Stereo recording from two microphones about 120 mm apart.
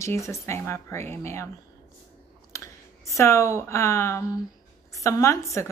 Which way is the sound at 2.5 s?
25° left (ahead or behind).